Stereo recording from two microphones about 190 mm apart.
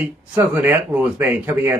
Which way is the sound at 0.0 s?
10° right (ahead or behind).